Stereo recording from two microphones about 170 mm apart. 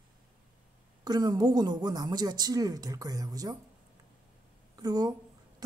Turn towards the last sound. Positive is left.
turn(degrees=-20)  # may be behind; listen again after turning